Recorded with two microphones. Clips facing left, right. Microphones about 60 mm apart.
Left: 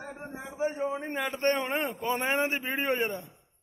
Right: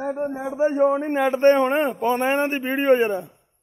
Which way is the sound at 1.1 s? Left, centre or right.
Right.